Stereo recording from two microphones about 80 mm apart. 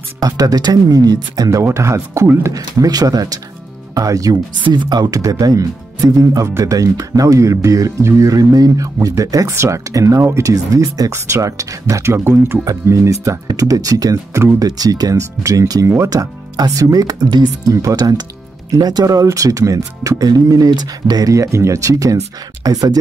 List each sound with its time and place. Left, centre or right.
0.2 s speech: right
1.6 s speech: right
2.5 s speech: right
4.6 s speech: right
14.6 s speech: right
17.8 s speech: right